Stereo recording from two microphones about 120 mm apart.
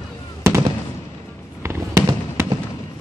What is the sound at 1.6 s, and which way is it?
Fireworks, 25° right (ahead or behind).